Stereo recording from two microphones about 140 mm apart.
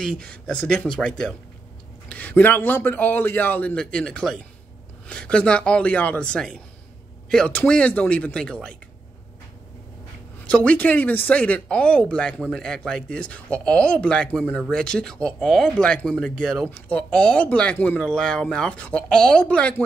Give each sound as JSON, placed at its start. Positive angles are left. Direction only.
{"t": 0.2, "sound": "speech", "side_deg": 10}
{"t": 10.4, "sound": "speech", "side_deg": 10}